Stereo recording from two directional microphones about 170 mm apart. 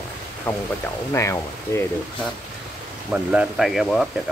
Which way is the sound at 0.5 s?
10° left (ahead or behind).